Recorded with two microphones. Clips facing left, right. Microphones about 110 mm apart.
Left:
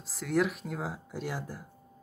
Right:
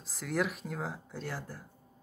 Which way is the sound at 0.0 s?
Centre (ahead or behind).